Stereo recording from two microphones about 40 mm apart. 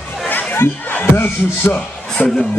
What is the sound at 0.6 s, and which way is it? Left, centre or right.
Speech, left.